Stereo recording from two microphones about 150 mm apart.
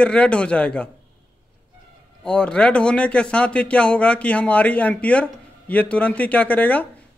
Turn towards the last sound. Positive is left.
turn(degrees=10)  # may be behind; listen again after turning